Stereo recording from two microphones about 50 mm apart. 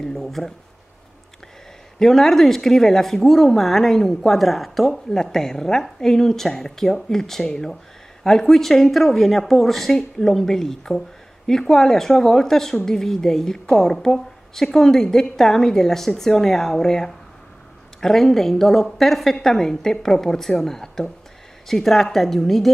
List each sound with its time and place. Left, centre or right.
0.0 s speech: centre
2.0 s a woman's voice: centre